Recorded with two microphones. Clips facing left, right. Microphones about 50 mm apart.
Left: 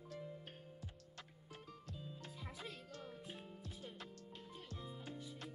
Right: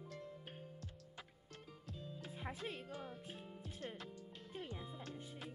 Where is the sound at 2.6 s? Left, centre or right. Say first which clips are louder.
Right 4 dB; right.